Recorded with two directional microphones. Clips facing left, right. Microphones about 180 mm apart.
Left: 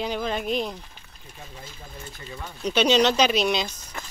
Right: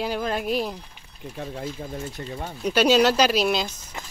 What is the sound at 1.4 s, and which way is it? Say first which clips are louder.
Speech: right 11 dB; 75° right (ahead or behind).